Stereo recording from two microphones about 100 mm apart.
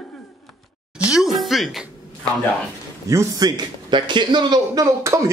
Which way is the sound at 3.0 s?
35° right (ahead or behind).